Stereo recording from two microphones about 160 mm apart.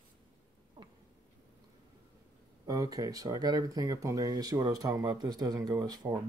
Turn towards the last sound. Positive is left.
turn(degrees=-25)  # may be behind; listen again after turning